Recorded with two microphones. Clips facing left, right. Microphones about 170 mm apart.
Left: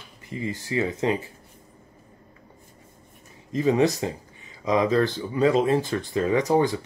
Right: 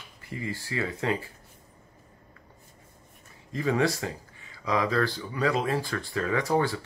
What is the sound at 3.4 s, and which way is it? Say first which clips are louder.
Speech: left 5 dB; 20° left (ahead or behind).